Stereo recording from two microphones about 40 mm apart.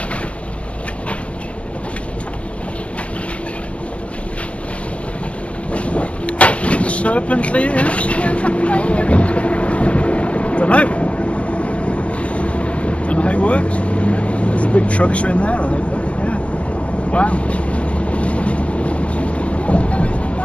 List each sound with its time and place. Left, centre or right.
5.7 s vehicle: left
17.1 s boat: left